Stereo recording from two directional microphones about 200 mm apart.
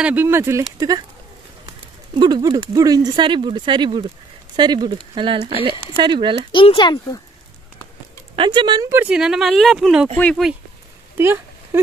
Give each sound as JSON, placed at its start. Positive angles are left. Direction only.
{"t": 0.0, "sound": "speech", "side_deg": -10}
{"t": 2.1, "sound": "speech", "side_deg": -20}
{"t": 6.5, "sound": "speech", "side_deg": 25}
{"t": 8.4, "sound": "speech", "side_deg": -25}
{"t": 8.9, "sound": "speech", "side_deg": -5}
{"t": 11.1, "sound": "a sound", "side_deg": -10}